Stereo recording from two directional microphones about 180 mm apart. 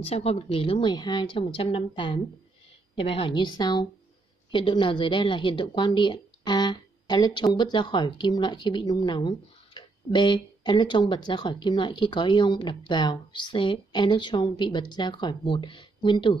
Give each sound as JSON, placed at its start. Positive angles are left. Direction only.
{"t": 0.0, "sound": "a woman's voice", "side_deg": 35}